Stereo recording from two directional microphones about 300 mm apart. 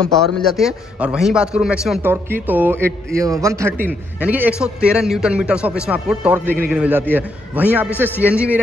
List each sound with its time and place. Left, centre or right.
0.4 s a man's voice: centre